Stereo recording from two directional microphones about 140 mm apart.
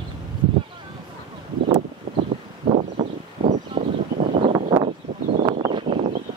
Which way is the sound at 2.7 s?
50° right (ahead or behind).